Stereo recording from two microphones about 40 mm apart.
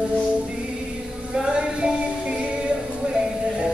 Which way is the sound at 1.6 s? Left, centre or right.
Right.